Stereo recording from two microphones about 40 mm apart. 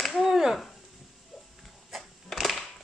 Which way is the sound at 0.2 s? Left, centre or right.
Centre.